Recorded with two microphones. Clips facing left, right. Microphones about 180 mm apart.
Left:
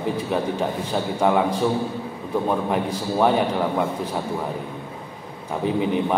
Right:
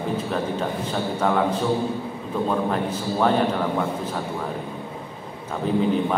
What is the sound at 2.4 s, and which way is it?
A man's voice, 15° left (ahead or behind).